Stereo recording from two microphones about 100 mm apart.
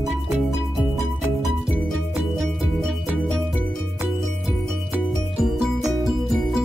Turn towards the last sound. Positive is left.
turn(degrees=-5)  # may be behind; listen again after turning